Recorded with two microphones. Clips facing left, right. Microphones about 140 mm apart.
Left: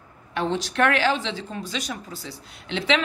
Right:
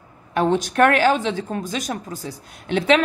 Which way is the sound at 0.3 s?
50° right (ahead or behind).